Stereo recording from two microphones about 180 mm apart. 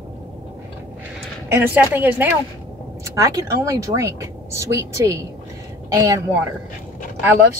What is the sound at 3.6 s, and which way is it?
Speech, 15° right (ahead or behind).